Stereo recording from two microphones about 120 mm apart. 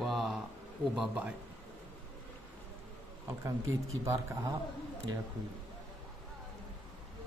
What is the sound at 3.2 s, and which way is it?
A man's voice, 25° right (ahead or behind).